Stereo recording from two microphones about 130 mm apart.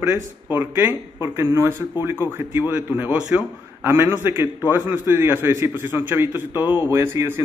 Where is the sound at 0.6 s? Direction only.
15° right (ahead or behind).